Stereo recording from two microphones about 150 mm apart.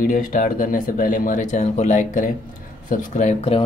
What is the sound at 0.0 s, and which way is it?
Speech, 65° left (ahead or behind).